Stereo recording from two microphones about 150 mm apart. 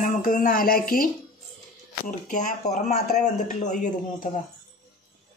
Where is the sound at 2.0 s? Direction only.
55° left (ahead or behind).